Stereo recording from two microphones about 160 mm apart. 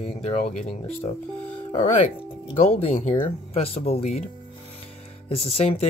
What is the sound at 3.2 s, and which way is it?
Speech, 35° left (ahead or behind).